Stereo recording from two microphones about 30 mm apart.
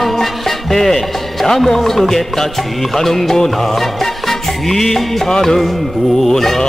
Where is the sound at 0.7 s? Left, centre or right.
Centre.